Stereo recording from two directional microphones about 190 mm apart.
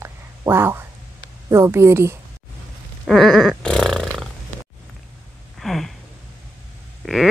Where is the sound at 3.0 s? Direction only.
Centre (ahead or behind).